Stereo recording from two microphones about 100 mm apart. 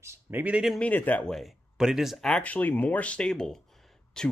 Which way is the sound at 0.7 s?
15° left (ahead or behind).